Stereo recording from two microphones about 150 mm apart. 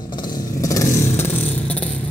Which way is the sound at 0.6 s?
20° left (ahead or behind).